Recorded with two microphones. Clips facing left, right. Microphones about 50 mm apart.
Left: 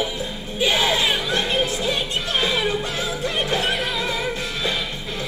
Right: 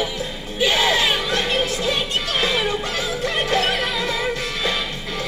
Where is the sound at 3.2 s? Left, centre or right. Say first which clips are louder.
Right 2 dB; right.